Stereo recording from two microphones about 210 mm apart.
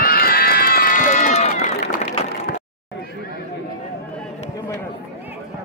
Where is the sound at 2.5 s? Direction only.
45° left (ahead or behind).